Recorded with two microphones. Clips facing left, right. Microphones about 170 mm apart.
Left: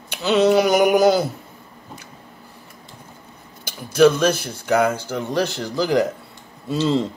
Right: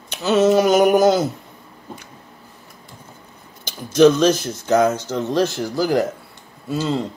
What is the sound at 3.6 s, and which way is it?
Speech, 10° left (ahead or behind).